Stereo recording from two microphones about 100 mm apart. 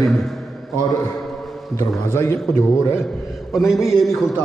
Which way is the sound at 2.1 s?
30° left (ahead or behind).